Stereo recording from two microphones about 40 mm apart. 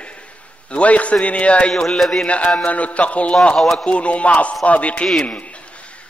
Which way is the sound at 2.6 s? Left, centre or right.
Left.